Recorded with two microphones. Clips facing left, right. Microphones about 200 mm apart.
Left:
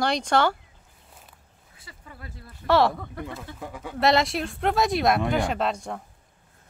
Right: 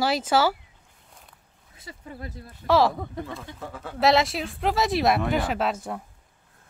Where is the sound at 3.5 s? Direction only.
15° left (ahead or behind).